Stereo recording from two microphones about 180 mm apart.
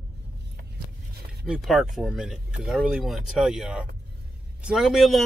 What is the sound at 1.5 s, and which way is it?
Speech, centre (ahead or behind).